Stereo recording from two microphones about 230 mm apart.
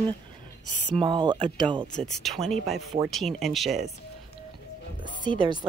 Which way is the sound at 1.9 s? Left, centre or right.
Centre.